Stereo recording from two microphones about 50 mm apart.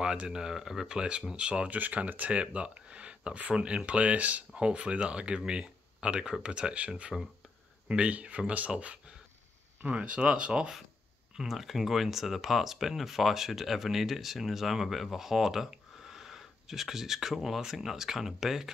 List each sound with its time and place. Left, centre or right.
0.0 s speech: centre
1.8 s speech: right
7.1 s speech: centre
7.9 s speech: right
11.3 s speech: centre